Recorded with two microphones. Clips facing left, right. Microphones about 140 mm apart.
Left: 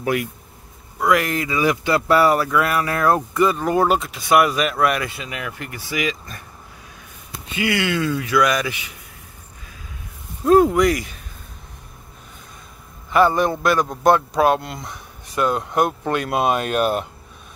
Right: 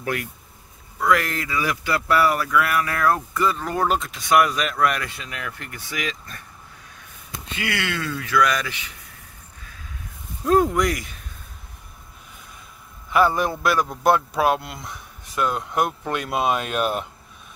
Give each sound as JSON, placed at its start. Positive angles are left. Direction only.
{"t": 0.0, "sound": "speech", "side_deg": 10}
{"t": 3.3, "sound": "speech", "side_deg": 15}
{"t": 7.5, "sound": "speech", "side_deg": 15}
{"t": 10.4, "sound": "speech", "side_deg": 10}
{"t": 13.1, "sound": "speech", "side_deg": -5}